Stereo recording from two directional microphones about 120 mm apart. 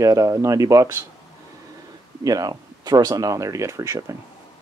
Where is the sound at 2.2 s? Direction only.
30° right (ahead or behind).